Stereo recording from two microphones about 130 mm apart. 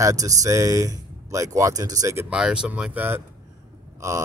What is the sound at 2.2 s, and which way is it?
Speech, 5° right (ahead or behind).